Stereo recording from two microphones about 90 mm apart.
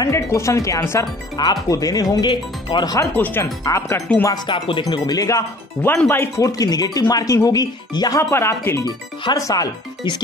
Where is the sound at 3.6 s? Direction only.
35° left (ahead or behind).